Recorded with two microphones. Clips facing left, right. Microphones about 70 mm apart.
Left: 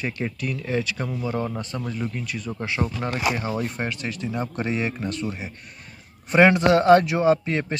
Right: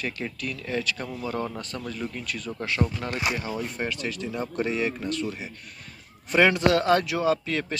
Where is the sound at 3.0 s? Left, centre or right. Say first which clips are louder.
Left 4 dB; left.